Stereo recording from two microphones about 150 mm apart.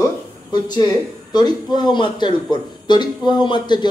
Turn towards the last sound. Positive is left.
turn(degrees=30)  # may be behind; listen again after turning